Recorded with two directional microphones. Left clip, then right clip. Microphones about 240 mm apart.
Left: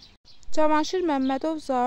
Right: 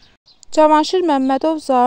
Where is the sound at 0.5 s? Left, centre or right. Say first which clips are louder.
Right 10 dB; right.